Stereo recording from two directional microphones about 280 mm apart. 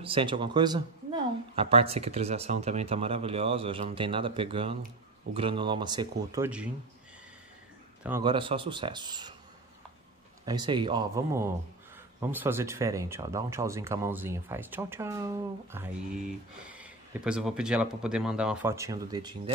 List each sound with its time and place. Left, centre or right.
0.0 s speech: centre
8.2 s speech: centre
10.4 s speech: centre